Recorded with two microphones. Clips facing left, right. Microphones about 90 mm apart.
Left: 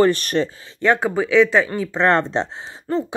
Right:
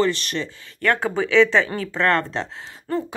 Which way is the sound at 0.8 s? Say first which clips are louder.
Left 3 dB; 20° left (ahead or behind).